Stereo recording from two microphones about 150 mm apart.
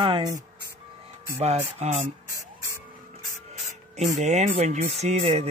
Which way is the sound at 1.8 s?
50° right (ahead or behind).